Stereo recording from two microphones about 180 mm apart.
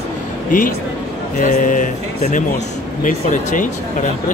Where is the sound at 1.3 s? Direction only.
45° left (ahead or behind).